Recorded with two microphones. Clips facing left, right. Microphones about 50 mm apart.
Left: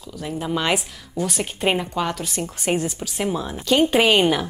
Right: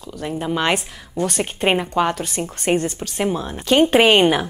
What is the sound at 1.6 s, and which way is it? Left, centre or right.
Speech, right.